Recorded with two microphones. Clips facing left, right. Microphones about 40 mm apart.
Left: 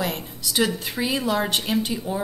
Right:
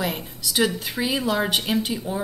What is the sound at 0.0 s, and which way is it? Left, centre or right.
A woman's voice, centre.